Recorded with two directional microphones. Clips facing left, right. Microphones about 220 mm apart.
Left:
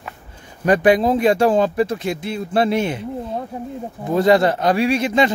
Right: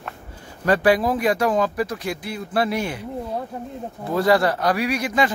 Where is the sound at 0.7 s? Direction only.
20° left (ahead or behind).